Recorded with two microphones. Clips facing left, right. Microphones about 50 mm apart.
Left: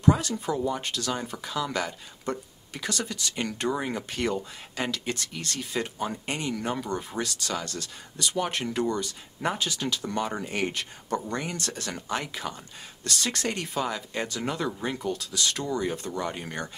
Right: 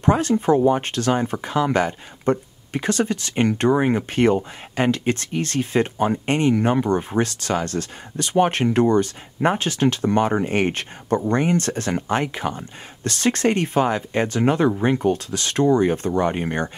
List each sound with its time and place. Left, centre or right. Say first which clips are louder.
0.0 s speech: right 6 dB; right